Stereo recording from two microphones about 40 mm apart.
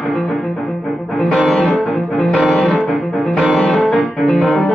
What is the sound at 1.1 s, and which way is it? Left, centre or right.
Music, centre.